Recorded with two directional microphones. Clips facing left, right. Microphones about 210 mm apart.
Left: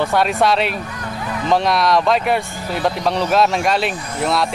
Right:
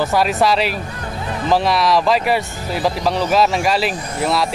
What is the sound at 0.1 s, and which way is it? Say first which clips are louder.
Speech: even; centre (ahead or behind).